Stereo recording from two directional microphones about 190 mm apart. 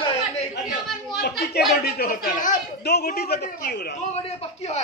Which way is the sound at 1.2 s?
55° left (ahead or behind).